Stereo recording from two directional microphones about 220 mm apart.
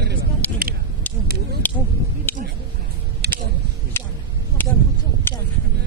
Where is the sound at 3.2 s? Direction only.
45° right (ahead or behind).